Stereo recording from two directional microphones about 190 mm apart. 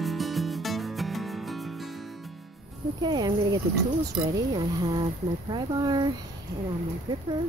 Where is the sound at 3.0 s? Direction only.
20° right (ahead or behind).